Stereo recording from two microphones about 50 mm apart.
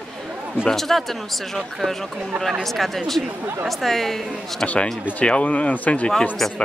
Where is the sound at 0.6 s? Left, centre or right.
Centre.